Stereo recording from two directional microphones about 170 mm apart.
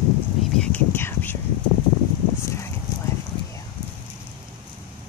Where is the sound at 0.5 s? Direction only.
10° left (ahead or behind).